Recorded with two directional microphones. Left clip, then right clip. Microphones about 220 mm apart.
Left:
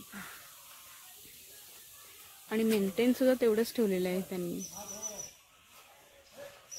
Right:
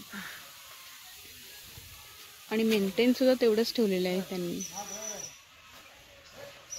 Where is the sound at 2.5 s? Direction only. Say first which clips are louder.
Right 3 dB; 5° left (ahead or behind).